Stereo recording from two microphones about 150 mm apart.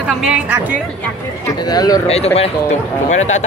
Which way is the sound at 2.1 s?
45° left (ahead or behind).